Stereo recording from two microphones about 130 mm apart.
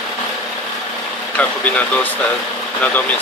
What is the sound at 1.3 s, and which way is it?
Speech, 10° left (ahead or behind).